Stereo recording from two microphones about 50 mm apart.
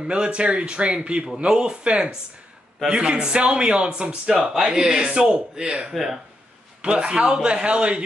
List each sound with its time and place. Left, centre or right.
0.0 s speech: right